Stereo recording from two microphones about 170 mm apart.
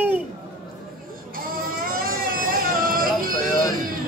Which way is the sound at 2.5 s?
55° right (ahead or behind).